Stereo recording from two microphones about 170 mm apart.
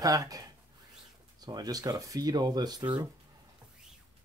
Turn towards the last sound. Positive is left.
turn(degrees=-25)  # may be behind; listen again after turning